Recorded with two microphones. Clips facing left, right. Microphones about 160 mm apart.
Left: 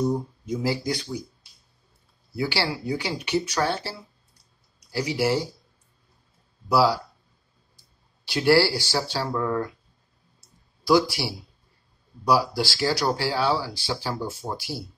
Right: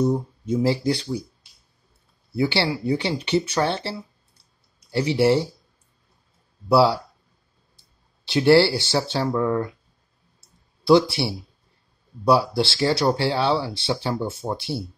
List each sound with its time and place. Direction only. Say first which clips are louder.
0.5 s speech: right 5 dB; 30° right (ahead or behind)
2.3 s speech: right 4 dB; 25° right (ahead or behind)
6.7 s speech: right 3 dB; 30° right (ahead or behind)
8.3 s speech: right 4 dB; 25° right (ahead or behind)
10.8 s speech: right 4 dB; 25° right (ahead or behind)